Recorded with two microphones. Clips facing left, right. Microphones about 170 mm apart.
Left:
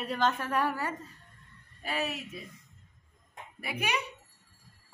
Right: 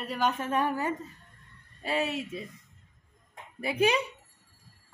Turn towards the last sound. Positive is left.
turn(degrees=-30)  # may be behind; listen again after turning